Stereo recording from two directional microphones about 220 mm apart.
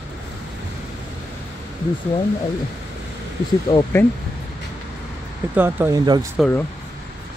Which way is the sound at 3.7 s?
20° left (ahead or behind).